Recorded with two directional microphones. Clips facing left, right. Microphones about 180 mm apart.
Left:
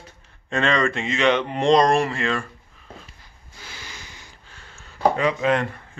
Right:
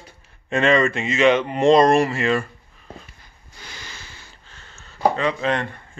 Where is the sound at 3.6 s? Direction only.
5° left (ahead or behind).